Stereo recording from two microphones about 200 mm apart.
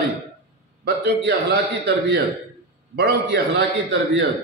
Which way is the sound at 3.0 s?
55° right (ahead or behind).